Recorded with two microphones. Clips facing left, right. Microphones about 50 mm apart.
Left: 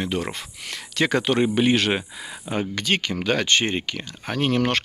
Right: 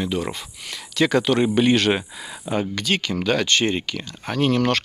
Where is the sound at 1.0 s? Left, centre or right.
Left.